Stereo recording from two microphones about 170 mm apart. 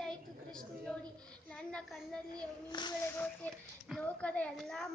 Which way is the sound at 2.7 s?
25° left (ahead or behind).